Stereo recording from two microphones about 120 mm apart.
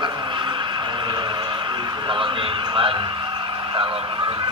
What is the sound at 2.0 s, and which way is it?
Speech, 45° right (ahead or behind).